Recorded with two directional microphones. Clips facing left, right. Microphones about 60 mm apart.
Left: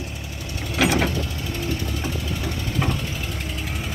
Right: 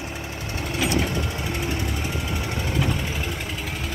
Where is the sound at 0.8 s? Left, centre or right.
Left.